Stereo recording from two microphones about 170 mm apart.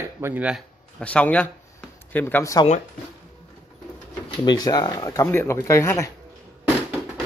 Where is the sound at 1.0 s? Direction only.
10° left (ahead or behind).